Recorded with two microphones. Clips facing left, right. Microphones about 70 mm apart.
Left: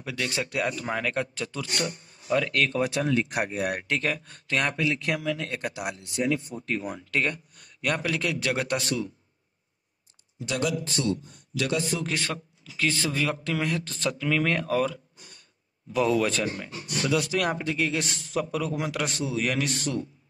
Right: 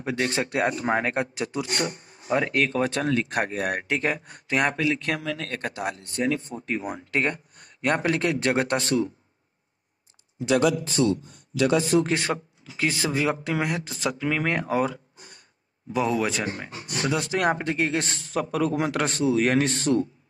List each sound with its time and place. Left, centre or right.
0.0 s speech: right
2.5 s speech: centre
4.0 s speech: right; by 6.2 s centre
6.5 s speech: centre
7.0 s speech: right
11.1 s speech: right
15.9 s speech: centre
16.4 s speech: right